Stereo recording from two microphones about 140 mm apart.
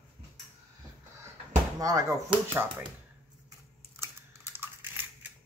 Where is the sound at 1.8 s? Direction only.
25° right (ahead or behind).